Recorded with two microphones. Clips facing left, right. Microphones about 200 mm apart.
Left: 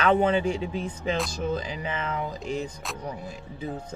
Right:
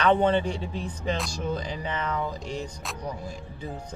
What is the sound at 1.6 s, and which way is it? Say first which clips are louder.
Speech: even; 40° right (ahead or behind).